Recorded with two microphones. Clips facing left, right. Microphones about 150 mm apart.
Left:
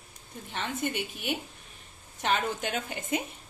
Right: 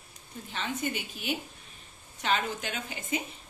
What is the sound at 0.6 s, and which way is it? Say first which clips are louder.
A woman's voice: left 1 dB; 55° left (ahead or behind).